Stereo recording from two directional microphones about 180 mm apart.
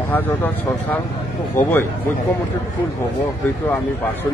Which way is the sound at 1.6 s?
15° left (ahead or behind).